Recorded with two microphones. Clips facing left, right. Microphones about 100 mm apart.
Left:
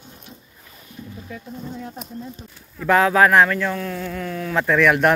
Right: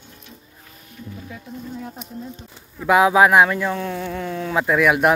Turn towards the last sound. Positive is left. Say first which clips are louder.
# even
turn(degrees=-10)  # may be behind; listen again after turning